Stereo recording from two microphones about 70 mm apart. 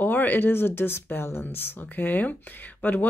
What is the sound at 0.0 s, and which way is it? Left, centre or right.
Speech, left.